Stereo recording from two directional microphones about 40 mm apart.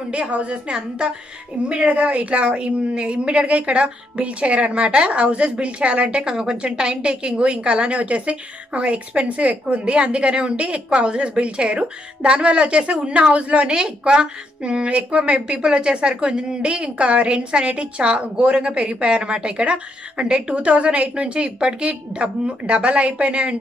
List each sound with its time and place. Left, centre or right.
0.1 s a woman's voice: right